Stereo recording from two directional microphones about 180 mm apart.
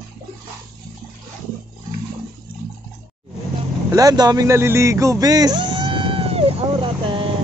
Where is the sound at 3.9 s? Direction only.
20° right (ahead or behind).